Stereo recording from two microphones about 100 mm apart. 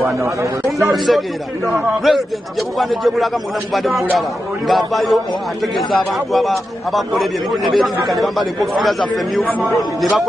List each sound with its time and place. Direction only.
0.0 s speech: 30° right (ahead or behind)
0.9 s a man's voice: centre (ahead or behind)
6.3 s a man's voice: centre (ahead or behind)